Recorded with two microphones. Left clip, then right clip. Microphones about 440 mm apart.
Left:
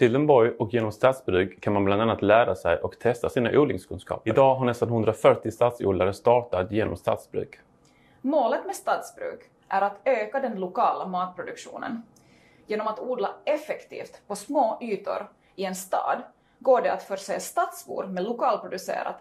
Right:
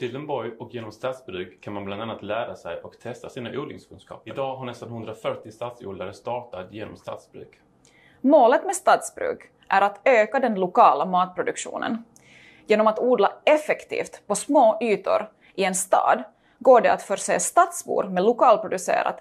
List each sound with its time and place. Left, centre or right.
0.0 s speech: left
8.3 s a woman's voice: right